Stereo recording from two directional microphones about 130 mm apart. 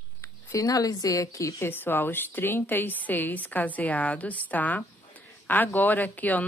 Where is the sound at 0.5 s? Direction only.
25° left (ahead or behind).